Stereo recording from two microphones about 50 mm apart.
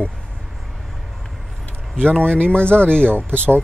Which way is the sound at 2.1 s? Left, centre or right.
Left.